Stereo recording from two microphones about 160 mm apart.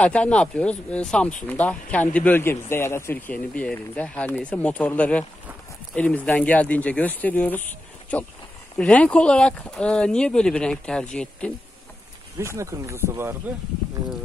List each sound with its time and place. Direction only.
0.0 s speech: 5° left (ahead or behind)
12.5 s speech: 20° right (ahead or behind)